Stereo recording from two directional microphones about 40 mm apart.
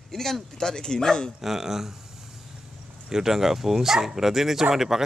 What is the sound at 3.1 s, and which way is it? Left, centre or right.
Speech, centre.